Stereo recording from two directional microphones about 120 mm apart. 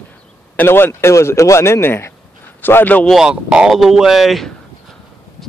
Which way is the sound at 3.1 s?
5° right (ahead or behind).